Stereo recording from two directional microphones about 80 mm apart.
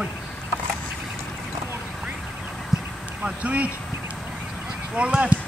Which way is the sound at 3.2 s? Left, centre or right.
Centre.